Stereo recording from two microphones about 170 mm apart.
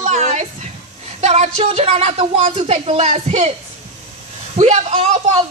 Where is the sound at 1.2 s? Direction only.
40° right (ahead or behind).